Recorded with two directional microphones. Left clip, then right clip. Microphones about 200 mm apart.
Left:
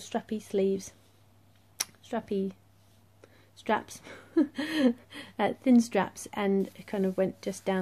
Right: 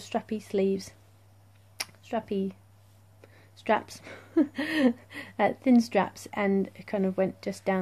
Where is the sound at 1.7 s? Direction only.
5° right (ahead or behind).